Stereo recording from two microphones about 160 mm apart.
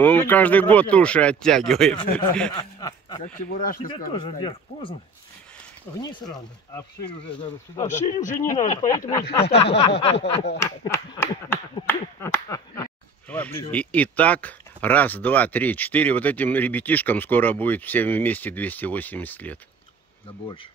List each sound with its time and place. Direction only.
0.0 s speech: 10° left (ahead or behind)
2.5 s a sound: 25° left (ahead or behind)
3.3 s speech: 65° left (ahead or behind)
4.1 s speech: 30° left (ahead or behind)
7.1 s speech: 35° left (ahead or behind)
8.2 s speech: 55° left (ahead or behind)
8.8 s speech: 20° left (ahead or behind)
9.4 s speech: 35° left (ahead or behind)
9.9 s a sound: 90° left
10.6 s speech: 20° left (ahead or behind)
13.3 s speech: 10° left (ahead or behind)